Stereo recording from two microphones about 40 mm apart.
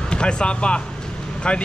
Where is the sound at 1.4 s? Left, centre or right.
Left.